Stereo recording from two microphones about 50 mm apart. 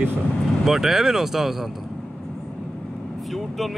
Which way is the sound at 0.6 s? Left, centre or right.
Centre.